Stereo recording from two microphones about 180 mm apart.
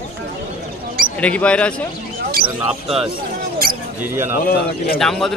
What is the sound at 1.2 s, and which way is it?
Speech, 5° left (ahead or behind).